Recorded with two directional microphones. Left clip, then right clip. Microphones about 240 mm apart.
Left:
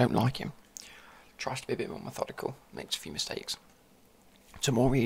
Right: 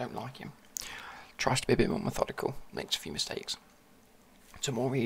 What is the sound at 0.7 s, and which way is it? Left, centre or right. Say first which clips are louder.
Speech: right 7 dB; centre.